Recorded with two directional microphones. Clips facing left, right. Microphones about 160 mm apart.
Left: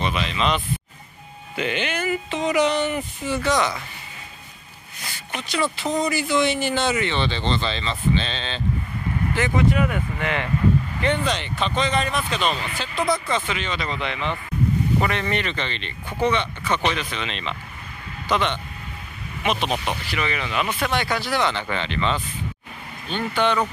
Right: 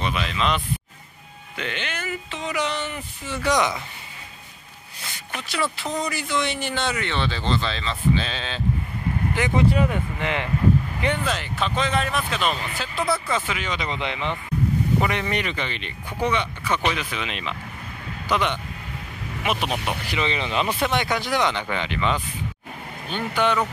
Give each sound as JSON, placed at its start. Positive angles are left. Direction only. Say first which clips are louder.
{"t": 0.0, "sound": "speech", "louder": "left 1 dB", "side_deg": 0}
{"t": 1.6, "sound": "speech", "louder": "left 6 dB", "side_deg": 10}
{"t": 3.4, "sound": "speech", "louder": "right 1 dB", "side_deg": -15}
{"t": 5.5, "sound": "speech", "louder": "left 3 dB", "side_deg": 0}
{"t": 9.6, "sound": "speech", "louder": "even", "side_deg": -30}
{"t": 11.0, "sound": "speech", "louder": "left 2 dB", "side_deg": -5}
{"t": 20.1, "sound": "speech", "louder": "right 1 dB", "side_deg": -25}